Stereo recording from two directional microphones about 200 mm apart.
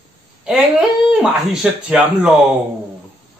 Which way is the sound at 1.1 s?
5° right (ahead or behind).